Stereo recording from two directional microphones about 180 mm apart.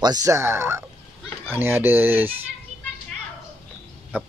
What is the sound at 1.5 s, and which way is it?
Speech, 10° right (ahead or behind).